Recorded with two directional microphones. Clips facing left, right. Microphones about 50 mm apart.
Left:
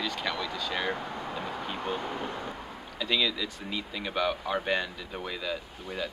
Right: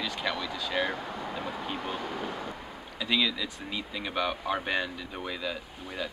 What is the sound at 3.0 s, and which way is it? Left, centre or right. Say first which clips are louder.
Speech: even; centre.